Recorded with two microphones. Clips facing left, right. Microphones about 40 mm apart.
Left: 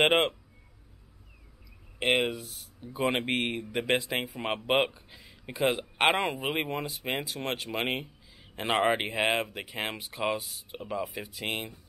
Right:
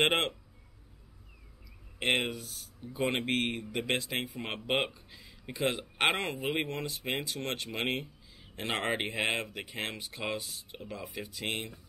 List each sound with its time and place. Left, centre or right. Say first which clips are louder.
2.0 s speech: left 3 dB; centre